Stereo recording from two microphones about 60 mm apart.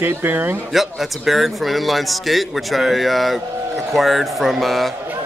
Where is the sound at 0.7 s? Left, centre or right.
Centre.